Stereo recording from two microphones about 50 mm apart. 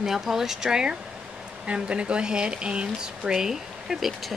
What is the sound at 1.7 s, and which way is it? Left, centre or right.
Speech, right.